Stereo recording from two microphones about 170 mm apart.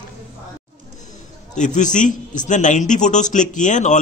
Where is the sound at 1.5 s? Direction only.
45° left (ahead or behind).